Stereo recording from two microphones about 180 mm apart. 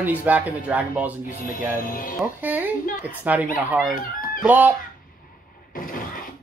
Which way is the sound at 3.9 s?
50° left (ahead or behind).